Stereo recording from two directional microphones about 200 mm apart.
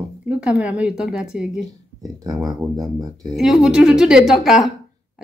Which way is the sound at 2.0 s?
20° right (ahead or behind).